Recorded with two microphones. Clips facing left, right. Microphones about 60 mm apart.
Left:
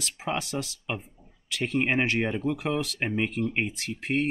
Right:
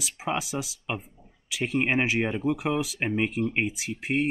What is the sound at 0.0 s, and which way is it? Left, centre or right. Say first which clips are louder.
Speech: right 1 dB; centre.